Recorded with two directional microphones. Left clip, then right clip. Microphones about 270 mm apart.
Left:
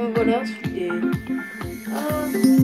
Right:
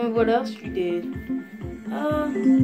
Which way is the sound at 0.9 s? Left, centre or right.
Centre.